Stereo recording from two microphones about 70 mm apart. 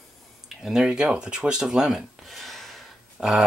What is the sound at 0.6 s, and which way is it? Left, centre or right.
Speech, centre.